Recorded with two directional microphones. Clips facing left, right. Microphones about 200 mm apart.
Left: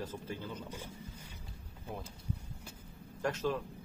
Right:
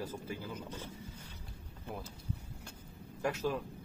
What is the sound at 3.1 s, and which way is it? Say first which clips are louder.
Speech: even; 10° right (ahead or behind).